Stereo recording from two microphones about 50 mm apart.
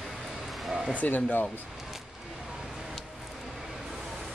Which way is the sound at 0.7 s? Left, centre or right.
Centre.